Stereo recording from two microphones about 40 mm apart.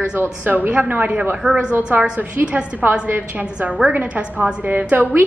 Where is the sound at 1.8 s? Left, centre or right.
Right.